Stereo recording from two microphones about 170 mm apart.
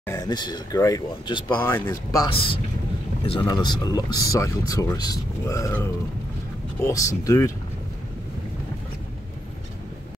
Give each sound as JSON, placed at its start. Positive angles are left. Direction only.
{"t": 0.0, "sound": "speech", "side_deg": 15}
{"t": 0.3, "sound": "speech", "side_deg": 25}
{"t": 1.6, "sound": "speech", "side_deg": 15}
{"t": 2.3, "sound": "speech", "side_deg": 30}